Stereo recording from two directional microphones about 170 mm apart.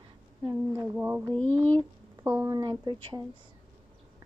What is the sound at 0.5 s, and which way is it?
Speech, 15° right (ahead or behind).